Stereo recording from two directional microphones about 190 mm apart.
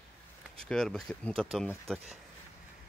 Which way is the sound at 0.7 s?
Centre (ahead or behind).